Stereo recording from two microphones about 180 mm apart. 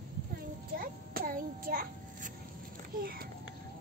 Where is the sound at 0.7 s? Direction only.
55° right (ahead or behind).